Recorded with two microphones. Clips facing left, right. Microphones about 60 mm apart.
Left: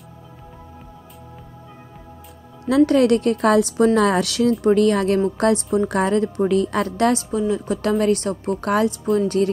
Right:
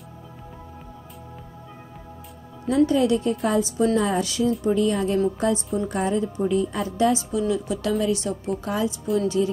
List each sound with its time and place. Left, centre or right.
2.9 s a woman's voice: left
7.0 s a woman's voice: left
7.2 s a woman's voice: left